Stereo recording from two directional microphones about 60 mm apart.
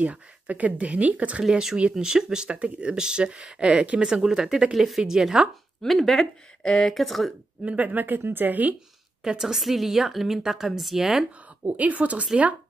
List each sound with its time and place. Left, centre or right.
0.0 s speech: right
5.8 s a woman's voice: centre
7.6 s speech: right
9.2 s a woman's voice: centre
11.6 s speech: right